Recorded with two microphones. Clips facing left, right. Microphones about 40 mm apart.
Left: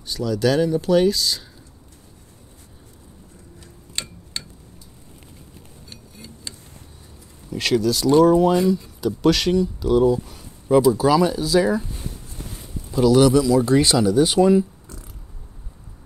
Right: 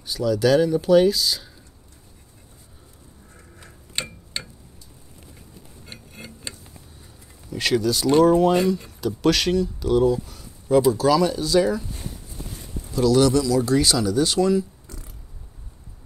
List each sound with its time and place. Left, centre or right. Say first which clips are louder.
0.0 s speech: right 1 dB; centre
4.0 s tick-tock: right 2 dB; centre
6.5 s vehicle: even; right
7.5 s speech: left 1 dB; centre
13.0 s speech: left 3 dB; centre